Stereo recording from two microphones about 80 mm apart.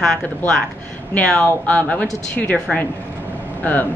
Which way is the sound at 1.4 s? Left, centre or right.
Centre.